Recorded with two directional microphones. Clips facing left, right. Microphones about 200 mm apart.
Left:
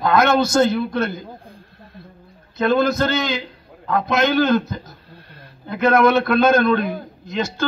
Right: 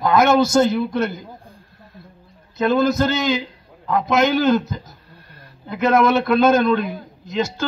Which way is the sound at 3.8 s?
20° right (ahead or behind).